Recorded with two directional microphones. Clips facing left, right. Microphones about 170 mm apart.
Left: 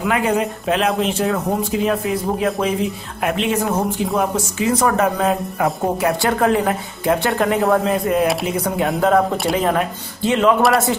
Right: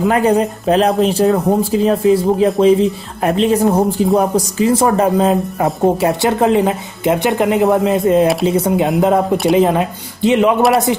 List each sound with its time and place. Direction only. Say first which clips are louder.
0.0 s speech: right 5 dB; 35° right (ahead or behind); by 11.0 s 20° right (ahead or behind)